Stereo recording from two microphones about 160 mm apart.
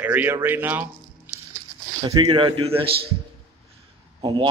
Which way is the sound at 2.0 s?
30° right (ahead or behind).